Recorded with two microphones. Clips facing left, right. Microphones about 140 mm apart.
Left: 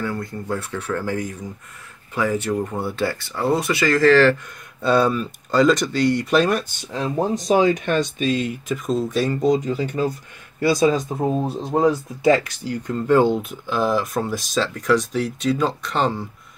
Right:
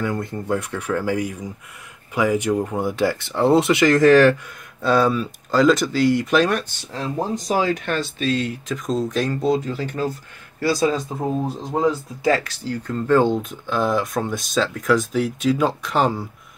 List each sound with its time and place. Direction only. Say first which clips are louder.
0.0 s speech: right 2 dB; 20° right (ahead or behind)
4.8 s speech: even; centre (ahead or behind)